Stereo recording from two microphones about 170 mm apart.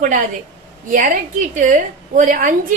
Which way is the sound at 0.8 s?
50° right (ahead or behind).